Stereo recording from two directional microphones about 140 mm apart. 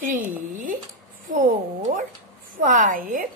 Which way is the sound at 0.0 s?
70° right (ahead or behind).